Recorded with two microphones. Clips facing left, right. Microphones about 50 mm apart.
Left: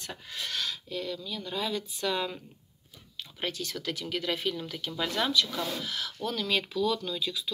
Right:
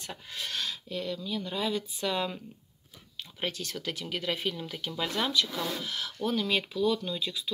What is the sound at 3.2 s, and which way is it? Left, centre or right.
Speech, right.